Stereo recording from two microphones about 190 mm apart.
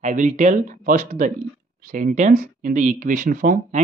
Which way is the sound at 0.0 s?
40° right (ahead or behind).